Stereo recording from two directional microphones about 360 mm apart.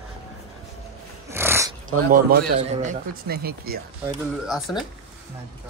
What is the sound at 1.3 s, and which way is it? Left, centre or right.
Dog, centre.